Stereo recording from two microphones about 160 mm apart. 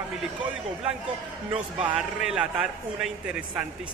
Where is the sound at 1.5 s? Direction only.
35° right (ahead or behind).